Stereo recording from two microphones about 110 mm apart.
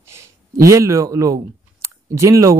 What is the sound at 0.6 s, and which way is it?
Speech, 25° right (ahead or behind).